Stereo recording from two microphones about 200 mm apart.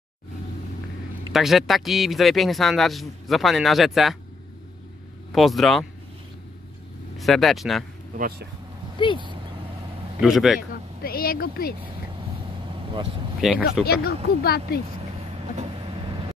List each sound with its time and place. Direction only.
1.3 s a man's voice: centre (ahead or behind)
5.3 s a man's voice: centre (ahead or behind)
7.2 s a man's voice: centre (ahead or behind)
8.9 s speech: 25° left (ahead or behind)
10.2 s a man's voice: centre (ahead or behind)
10.7 s speech: 50° left (ahead or behind)
12.7 s speech: 25° right (ahead or behind)
13.4 s a man's voice: 5° right (ahead or behind)
13.8 s speech: 50° left (ahead or behind)
15.5 s vehicle: 30° right (ahead or behind)